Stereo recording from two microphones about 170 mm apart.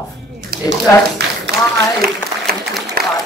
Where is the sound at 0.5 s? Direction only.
80° right.